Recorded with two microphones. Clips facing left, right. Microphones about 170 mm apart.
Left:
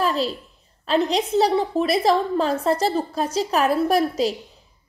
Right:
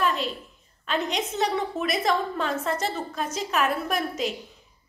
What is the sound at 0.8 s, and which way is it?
A woman's voice, 35° left (ahead or behind).